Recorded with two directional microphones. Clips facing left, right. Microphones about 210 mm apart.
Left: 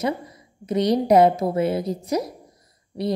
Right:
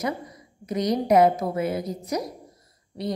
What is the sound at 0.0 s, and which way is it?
A woman's voice, 25° left (ahead or behind).